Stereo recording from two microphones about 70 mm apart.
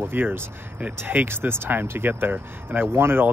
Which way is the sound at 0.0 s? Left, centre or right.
Right.